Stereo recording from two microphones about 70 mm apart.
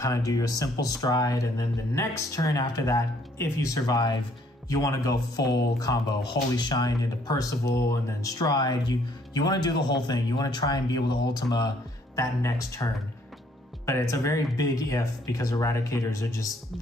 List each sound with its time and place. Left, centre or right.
0.0 s speech: left
3.7 s speech: left
4.6 s speech: left
12.2 s speech: left
13.8 s speech: left